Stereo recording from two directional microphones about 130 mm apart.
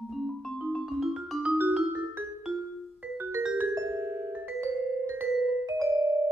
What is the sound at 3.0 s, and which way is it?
Music, 10° right (ahead or behind).